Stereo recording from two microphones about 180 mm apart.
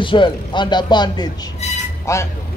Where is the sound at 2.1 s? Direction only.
15° left (ahead or behind).